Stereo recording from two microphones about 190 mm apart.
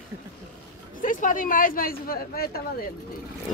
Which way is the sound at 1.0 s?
45° left (ahead or behind).